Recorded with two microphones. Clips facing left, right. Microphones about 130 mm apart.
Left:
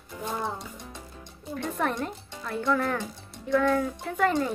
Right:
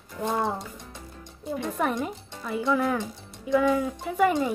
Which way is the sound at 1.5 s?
5° right (ahead or behind).